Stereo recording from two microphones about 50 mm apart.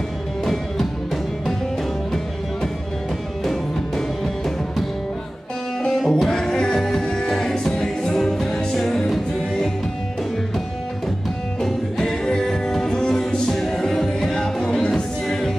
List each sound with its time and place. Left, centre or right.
0.5 s music: centre
5.9 s music: centre
6.3 s music: centre
11.6 s music: centre